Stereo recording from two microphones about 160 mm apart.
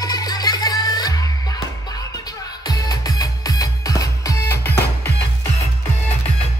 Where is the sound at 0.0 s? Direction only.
25° left (ahead or behind).